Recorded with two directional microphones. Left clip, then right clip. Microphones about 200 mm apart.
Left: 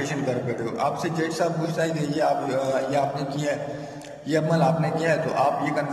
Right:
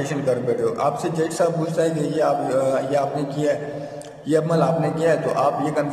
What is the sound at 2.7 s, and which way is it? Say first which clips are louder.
A man's voice: right 3 dB; 10° right (ahead or behind).